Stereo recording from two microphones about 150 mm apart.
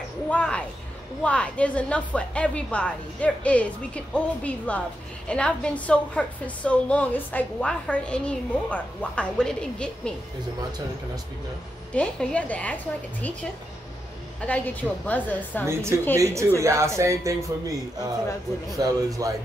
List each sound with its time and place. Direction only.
0.3 s a sound: 10° left (ahead or behind)
1.2 s a woman's voice: 10° left (ahead or behind)
11.9 s a woman's voice: 5° left (ahead or behind)
15.6 s a woman's voice: 15° right (ahead or behind)